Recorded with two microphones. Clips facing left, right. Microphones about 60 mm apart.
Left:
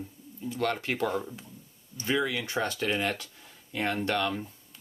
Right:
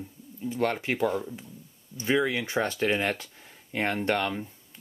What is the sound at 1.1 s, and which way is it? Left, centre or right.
Speech, centre.